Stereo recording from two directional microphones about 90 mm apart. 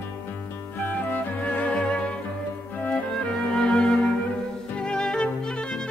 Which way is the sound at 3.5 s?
10° left (ahead or behind).